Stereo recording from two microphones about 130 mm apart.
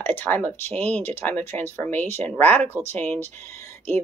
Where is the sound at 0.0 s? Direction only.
15° left (ahead or behind).